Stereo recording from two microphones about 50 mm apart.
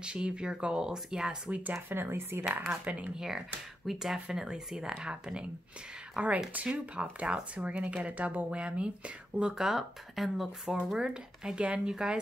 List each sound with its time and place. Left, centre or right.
0.0 s speech: centre
1.7 s speech: right
2.0 s speech: right
2.8 s speech: right
3.2 s speech: centre; by 9.6 s right
9.6 s speech: centre; by 11.9 s right